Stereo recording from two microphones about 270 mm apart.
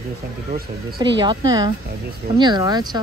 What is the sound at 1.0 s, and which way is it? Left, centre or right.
Speech, centre.